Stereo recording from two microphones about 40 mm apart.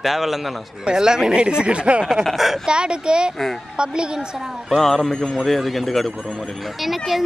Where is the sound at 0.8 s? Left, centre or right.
Centre.